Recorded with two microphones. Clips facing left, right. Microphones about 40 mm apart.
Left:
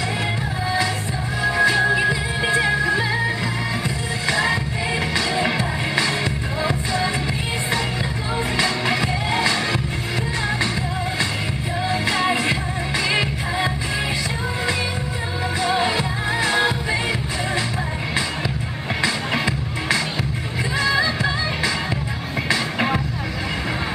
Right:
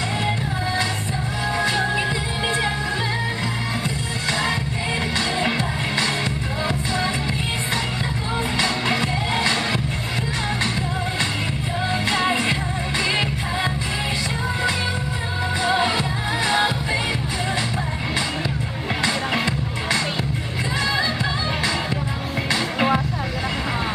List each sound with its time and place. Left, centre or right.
1.4 s music: left
4.3 s music: left
8.6 s music: right
12.1 s music: centre
15.6 s music: centre